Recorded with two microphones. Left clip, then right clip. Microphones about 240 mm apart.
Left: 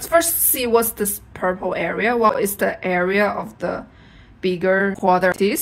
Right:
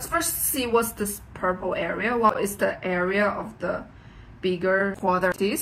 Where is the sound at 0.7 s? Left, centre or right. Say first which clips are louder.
Left 5 dB; left.